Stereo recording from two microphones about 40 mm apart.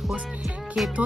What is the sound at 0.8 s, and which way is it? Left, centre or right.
Music, centre.